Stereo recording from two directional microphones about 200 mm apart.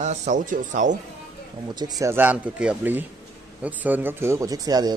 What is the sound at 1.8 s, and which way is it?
A man's voice, 20° right (ahead or behind).